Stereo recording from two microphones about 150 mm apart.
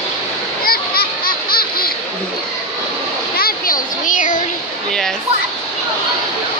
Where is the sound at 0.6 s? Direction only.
80° left.